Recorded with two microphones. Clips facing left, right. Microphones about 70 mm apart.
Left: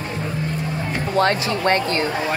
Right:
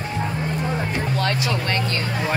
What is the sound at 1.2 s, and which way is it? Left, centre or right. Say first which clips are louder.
Speech: left 8 dB; left.